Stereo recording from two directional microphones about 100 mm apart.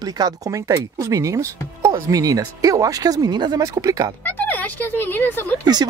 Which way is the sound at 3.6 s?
35° right (ahead or behind).